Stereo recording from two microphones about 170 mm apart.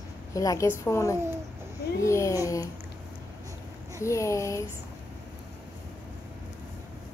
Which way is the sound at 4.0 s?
15° left (ahead or behind).